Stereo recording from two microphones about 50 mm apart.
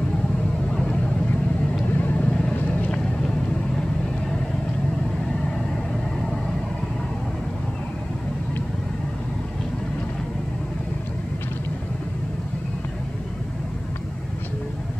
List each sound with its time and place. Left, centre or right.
1.9 s vehicle: left
2.9 s vehicle: centre